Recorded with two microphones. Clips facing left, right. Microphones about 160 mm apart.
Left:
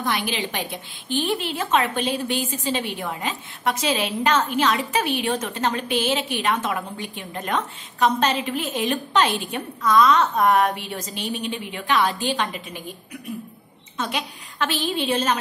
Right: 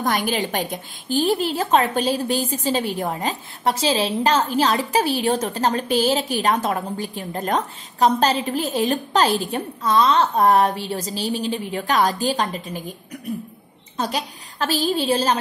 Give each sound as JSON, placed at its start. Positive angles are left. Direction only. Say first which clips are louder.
{"t": 0.0, "sound": "a woman's voice", "louder": "right 4 dB", "side_deg": -45}